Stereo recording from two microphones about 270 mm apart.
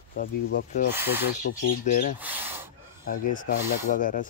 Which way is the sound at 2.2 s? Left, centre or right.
Centre.